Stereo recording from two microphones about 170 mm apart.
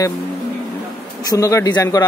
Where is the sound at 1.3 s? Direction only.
20° left (ahead or behind).